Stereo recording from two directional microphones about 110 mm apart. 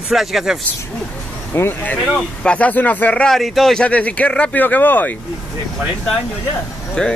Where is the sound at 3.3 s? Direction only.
Centre (ahead or behind).